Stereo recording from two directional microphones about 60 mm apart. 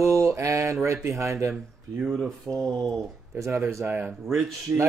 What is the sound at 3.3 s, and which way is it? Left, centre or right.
Speech, right.